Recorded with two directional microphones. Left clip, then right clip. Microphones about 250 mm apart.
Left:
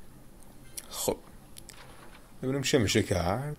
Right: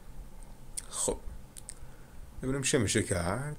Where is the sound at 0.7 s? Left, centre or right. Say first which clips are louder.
Left 2 dB; centre.